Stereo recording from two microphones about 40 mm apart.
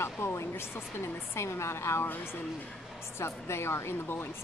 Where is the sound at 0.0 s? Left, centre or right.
Left.